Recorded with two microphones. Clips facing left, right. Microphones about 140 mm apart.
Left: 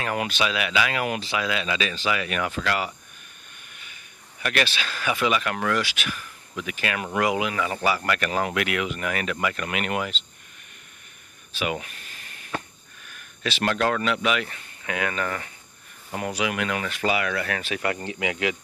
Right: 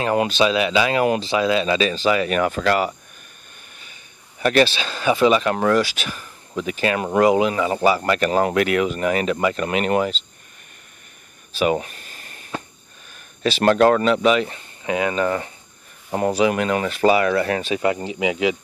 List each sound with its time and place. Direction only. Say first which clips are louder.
0.0 s speech: right 8 dB; 30° right (ahead or behind)
11.5 s a sound: right 9 dB; 35° right (ahead or behind)
13.0 s speech: right 8 dB; 30° right (ahead or behind)